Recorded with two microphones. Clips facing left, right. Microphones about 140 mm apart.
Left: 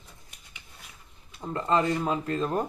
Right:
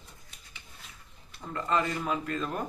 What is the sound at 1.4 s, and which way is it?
Speech, 30° left (ahead or behind).